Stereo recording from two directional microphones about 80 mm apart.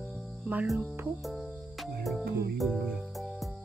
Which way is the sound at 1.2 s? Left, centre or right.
Centre.